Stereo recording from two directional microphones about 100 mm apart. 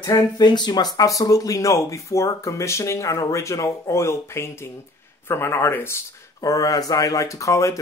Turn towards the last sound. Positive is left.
turn(degrees=30)  # may be behind; listen again after turning